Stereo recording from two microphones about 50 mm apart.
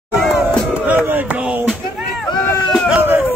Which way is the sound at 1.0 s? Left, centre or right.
Right.